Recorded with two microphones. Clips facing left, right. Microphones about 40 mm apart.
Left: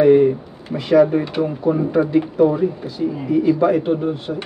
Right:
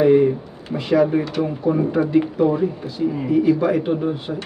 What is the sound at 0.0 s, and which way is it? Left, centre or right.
Speech, centre.